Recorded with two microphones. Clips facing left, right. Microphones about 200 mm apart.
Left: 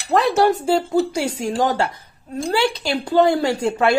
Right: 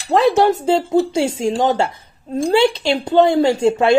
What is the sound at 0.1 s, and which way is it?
Speech, 20° right (ahead or behind).